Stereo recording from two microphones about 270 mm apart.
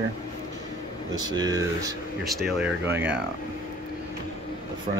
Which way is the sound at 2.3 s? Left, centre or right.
Centre.